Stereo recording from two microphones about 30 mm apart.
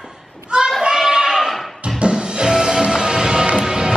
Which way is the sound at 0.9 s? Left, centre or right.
Centre.